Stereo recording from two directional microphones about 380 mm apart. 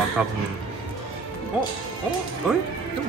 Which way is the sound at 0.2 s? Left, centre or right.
Centre.